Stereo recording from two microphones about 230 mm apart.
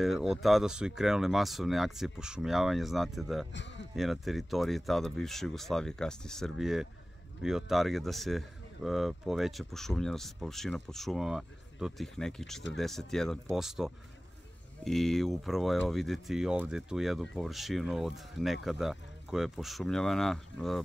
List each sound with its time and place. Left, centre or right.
0.0 s speech: centre
3.5 s speech: left
3.9 s speech: centre